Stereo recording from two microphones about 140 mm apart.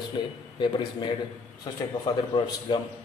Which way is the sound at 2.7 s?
35° left (ahead or behind).